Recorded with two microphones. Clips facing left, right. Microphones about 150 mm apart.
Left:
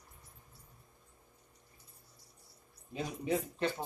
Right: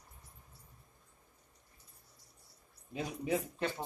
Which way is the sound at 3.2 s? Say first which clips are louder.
Left 1 dB; 10° right (ahead or behind).